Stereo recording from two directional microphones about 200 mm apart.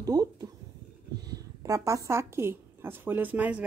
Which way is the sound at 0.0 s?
20° right (ahead or behind).